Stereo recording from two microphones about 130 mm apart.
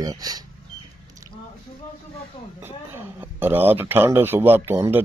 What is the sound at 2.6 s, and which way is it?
Speech, 15° right (ahead or behind).